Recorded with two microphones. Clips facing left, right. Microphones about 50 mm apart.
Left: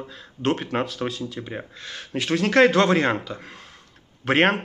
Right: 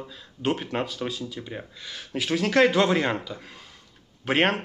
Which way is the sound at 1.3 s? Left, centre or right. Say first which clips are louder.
Left 3 dB; centre.